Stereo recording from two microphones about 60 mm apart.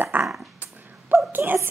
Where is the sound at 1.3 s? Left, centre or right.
Right.